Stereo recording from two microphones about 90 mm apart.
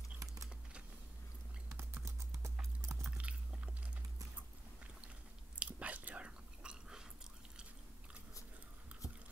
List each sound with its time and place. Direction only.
0.2 s a sound: 40° right (ahead or behind)
1.8 s typing: 30° right (ahead or behind)
2.6 s clip-clop: 30° right (ahead or behind)
3.1 s biting: 15° right (ahead or behind)
5.6 s chewing: 15° right (ahead or behind)